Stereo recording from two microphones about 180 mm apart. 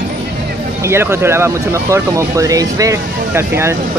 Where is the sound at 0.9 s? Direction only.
15° right (ahead or behind).